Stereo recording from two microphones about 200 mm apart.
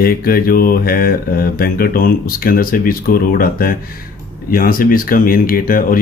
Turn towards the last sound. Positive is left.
turn(degrees=45)  # may be behind; listen again after turning